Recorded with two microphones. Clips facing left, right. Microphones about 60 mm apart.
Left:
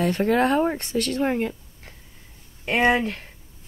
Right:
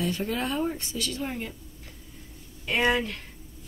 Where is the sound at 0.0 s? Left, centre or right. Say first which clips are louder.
Left 9 dB; left.